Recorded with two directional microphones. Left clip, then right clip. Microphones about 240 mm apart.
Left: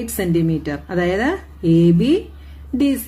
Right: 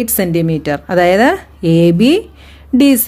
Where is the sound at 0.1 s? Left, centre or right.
Right.